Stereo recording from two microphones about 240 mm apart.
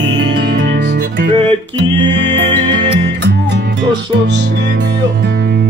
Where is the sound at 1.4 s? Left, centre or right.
Right.